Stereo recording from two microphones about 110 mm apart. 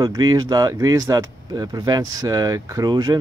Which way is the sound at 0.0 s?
35° right (ahead or behind).